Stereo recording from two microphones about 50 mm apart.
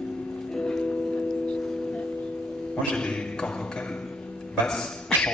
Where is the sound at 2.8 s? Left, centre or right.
Centre.